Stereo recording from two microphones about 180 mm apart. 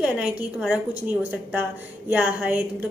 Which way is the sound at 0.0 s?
5° right (ahead or behind).